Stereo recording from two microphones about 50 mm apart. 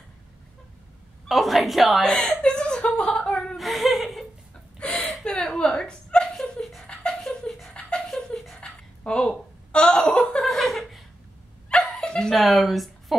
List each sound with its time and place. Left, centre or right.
1.3 s a woman's voice: centre
2.0 s chuckle: centre
3.5 s laughter: centre
4.9 s a sound: centre
5.2 s chuckle: centre
6.3 s a sound: centre
7.2 s pant: centre
7.8 s a sound: centre
10.4 s chuckle: centre
11.7 s dog: centre
12.4 s a woman's voice: centre